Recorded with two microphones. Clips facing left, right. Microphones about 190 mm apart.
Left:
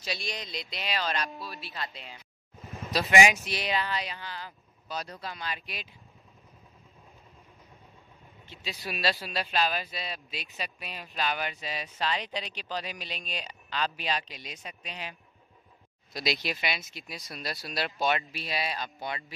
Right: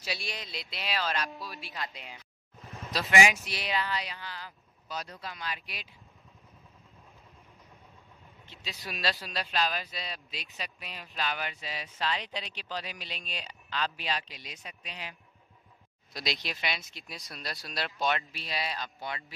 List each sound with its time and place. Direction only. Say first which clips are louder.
0.0 s speech: left 2 dB; 10° right (ahead or behind)
2.8 s speech: left 3 dB; 15° left (ahead or behind)
8.5 s speech: left 4 dB; 5° left (ahead or behind); by 15.1 s 20° left (ahead or behind)
16.1 s speech: left 4 dB; 5° left (ahead or behind)